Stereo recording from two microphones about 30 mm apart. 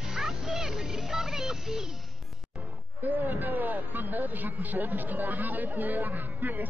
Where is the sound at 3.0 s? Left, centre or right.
Right.